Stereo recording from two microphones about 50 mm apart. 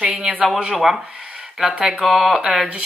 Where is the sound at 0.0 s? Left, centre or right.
Centre.